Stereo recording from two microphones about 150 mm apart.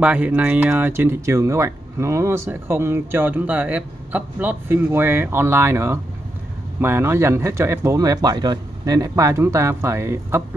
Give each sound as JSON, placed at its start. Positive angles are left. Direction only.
{"t": 0.0, "sound": "speech", "side_deg": -10}